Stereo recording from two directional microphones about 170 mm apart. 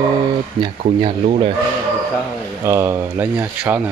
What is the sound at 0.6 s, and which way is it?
Speech, 30° right (ahead or behind).